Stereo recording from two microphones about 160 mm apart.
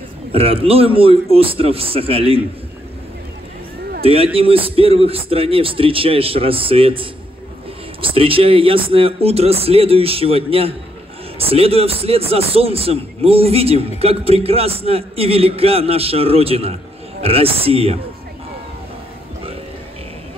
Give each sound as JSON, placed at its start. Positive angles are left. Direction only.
{"t": 0.3, "sound": "a man's voice", "side_deg": -35}
{"t": 4.0, "sound": "a man's voice", "side_deg": -35}